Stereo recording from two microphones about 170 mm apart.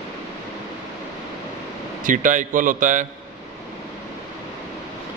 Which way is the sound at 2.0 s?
50° right (ahead or behind).